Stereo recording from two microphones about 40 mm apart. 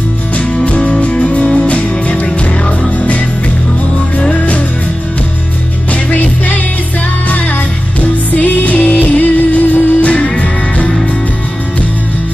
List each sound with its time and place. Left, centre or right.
0.7 s music: left
4.3 s music: left
6.1 s music: left
8.0 s music: left
10.1 s music: left